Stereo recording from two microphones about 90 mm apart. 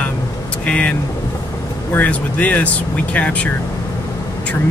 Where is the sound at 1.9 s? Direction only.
15° left (ahead or behind).